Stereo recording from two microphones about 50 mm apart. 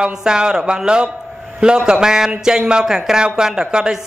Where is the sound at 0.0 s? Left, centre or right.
Centre.